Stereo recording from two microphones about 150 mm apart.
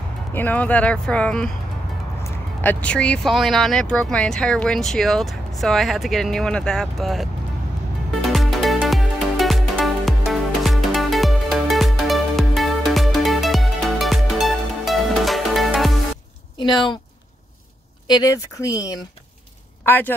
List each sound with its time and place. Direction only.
0.3 s speech: 10° left (ahead or behind)
8.2 s music: centre (ahead or behind)
16.5 s speech: 30° left (ahead or behind)
18.0 s speech: 25° left (ahead or behind)
19.8 s speech: 15° left (ahead or behind)